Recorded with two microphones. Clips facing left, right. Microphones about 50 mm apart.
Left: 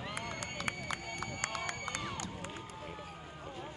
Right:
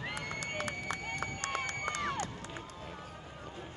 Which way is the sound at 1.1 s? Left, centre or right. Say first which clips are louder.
Right 3 dB; right.